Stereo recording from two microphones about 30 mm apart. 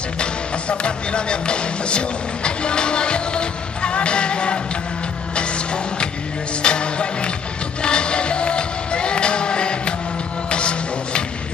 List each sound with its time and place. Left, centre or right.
0.2 s music: left